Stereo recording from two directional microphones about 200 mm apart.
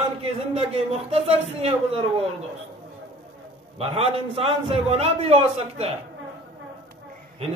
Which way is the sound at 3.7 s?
30° right (ahead or behind).